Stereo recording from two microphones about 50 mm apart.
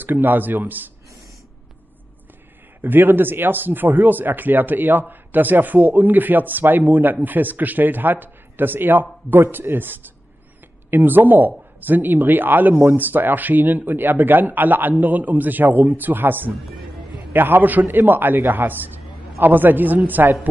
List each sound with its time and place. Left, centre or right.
0.0 s speech: right
2.8 s a woman's voice: right